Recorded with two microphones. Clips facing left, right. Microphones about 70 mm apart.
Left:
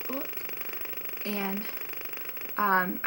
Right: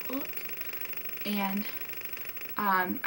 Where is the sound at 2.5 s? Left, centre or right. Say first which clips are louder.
Left 2 dB; centre.